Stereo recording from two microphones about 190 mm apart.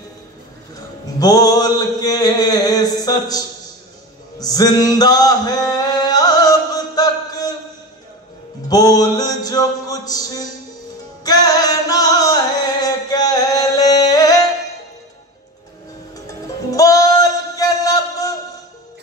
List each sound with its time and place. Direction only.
1.2 s mantra: 20° left (ahead or behind)
4.4 s music: 20° left (ahead or behind)
8.6 s a sound: 20° left (ahead or behind)
11.2 s music: 20° left (ahead or behind)
16.3 s music: 20° left (ahead or behind)